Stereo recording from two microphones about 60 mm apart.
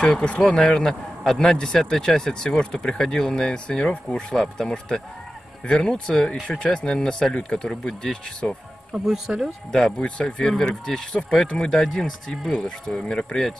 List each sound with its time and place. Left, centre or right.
0.0 s a man's voice: centre
8.9 s speech: centre
9.7 s a man's voice: centre